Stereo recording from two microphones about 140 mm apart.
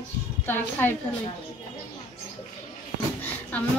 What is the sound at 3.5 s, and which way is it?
Speech, 10° left (ahead or behind).